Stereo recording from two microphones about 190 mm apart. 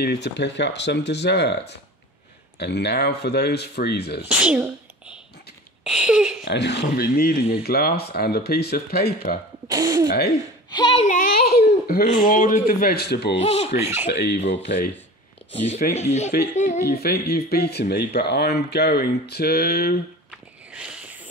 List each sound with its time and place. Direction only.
0.0 s speech: 60° left (ahead or behind)
4.3 s speech: 5° right (ahead or behind)
6.4 s speech: 65° left (ahead or behind)
9.7 s speech: 20° right (ahead or behind)
10.7 s speech: 25° left (ahead or behind)
11.1 s a man's voice: 45° left (ahead or behind)
13.4 s speech: 30° left (ahead or behind)
13.7 s speech: 15° right (ahead or behind)
14.0 s speech: 60° left (ahead or behind)
16.0 s speech: 35° left (ahead or behind)
16.9 s speech: 55° left (ahead or behind)
20.2 s a sound: 5° right (ahead or behind)